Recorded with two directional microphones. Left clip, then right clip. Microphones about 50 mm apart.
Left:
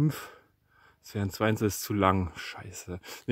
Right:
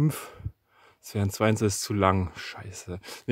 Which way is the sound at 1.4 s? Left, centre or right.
Right.